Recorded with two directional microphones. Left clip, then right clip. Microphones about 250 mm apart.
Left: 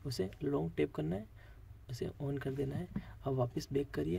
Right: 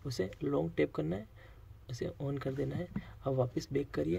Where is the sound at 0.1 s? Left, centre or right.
Centre.